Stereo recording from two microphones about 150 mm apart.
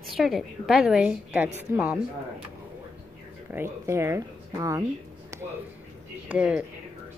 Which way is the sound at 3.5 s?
15° right (ahead or behind).